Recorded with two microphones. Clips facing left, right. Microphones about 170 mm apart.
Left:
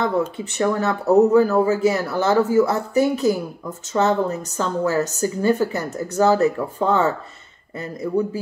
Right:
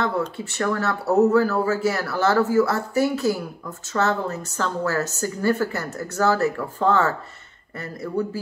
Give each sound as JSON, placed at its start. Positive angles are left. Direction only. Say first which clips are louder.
{"t": 0.4, "sound": "a woman's voice", "louder": "left 3 dB", "side_deg": 20}